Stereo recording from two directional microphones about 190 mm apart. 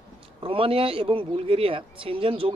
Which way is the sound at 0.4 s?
30° right (ahead or behind).